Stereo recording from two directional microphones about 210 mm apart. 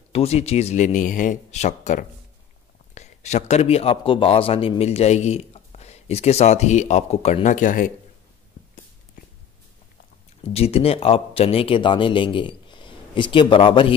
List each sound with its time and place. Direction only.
0.1 s a man's voice: 30° left (ahead or behind)
10.5 s speech: 30° left (ahead or behind)